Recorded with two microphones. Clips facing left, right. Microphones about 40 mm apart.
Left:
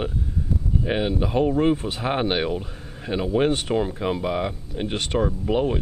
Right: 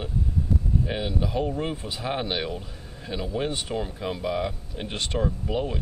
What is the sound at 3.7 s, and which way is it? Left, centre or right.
Speech, left.